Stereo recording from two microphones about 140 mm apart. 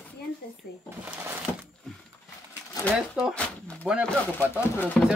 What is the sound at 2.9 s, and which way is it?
Speech, 5° right (ahead or behind).